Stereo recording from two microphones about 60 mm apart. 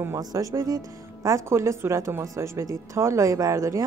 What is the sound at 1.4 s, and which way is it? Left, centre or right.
Speech, right.